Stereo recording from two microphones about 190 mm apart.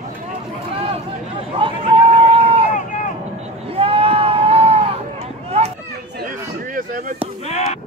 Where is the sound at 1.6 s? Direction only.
25° right (ahead or behind).